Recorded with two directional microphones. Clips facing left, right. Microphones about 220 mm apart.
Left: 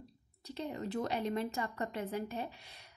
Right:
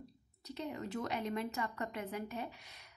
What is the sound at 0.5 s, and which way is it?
Speech, 30° left (ahead or behind).